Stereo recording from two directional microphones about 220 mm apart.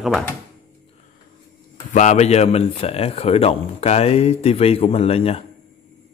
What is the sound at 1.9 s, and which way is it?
Speech, 30° left (ahead or behind).